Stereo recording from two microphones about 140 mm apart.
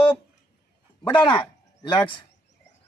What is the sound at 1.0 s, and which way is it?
A man's voice, 35° left (ahead or behind).